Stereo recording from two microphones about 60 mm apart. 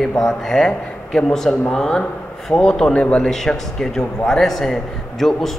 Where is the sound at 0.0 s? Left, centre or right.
Centre.